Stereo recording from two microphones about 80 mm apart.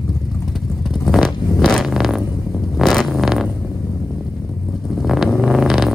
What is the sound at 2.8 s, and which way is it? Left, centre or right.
Vehicle, centre.